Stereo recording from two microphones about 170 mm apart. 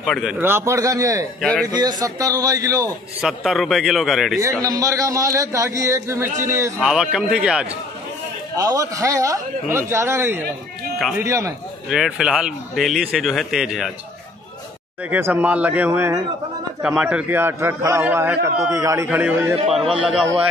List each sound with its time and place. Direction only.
0.0 s a man's voice: centre (ahead or behind)
0.4 s a man's voice: 15° right (ahead or behind)
1.4 s a man's voice: 5° left (ahead or behind)
1.7 s a man's voice: 25° right (ahead or behind)
3.2 s a man's voice: centre (ahead or behind)
4.4 s a man's voice: 20° right (ahead or behind)
6.8 s a man's voice: 5° right (ahead or behind)
8.5 s a man's voice: 20° right (ahead or behind)
11.9 s a man's voice: 5° right (ahead or behind)
15.0 s a man's voice: 10° right (ahead or behind)
19.0 s a man's voice: 10° right (ahead or behind)